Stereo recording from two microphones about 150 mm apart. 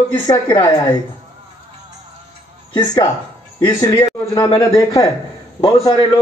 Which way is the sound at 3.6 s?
25° left (ahead or behind).